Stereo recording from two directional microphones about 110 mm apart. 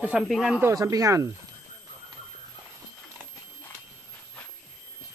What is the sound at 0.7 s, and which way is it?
Speech, 30° right (ahead or behind).